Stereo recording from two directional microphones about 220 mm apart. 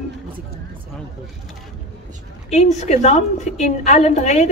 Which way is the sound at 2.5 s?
30° left (ahead or behind).